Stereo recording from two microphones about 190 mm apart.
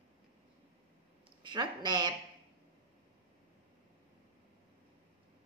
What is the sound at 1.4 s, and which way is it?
Speech, 25° right (ahead or behind).